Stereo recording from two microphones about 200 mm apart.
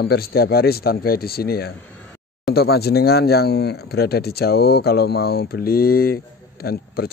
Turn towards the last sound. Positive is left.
turn(degrees=50)  # may be behind; listen again after turning